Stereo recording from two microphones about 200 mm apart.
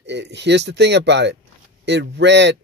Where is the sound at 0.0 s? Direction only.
60° right (ahead or behind).